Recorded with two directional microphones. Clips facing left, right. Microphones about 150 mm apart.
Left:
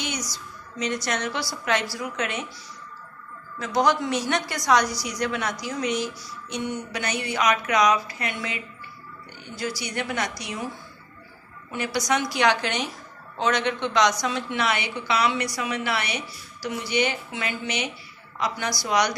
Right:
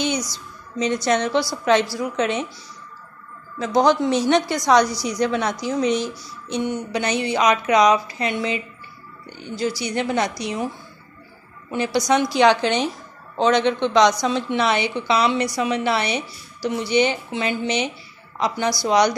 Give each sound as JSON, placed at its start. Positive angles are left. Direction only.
{"t": 0.0, "sound": "a sound", "side_deg": -25}
{"t": 0.8, "sound": "a woman's voice", "side_deg": -25}
{"t": 3.5, "sound": "a woman's voice", "side_deg": -30}
{"t": 9.6, "sound": "a woman's voice", "side_deg": -25}
{"t": 11.7, "sound": "a woman's voice", "side_deg": -30}